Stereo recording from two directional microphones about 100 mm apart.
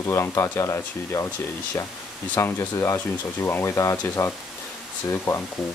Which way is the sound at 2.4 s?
25° left (ahead or behind).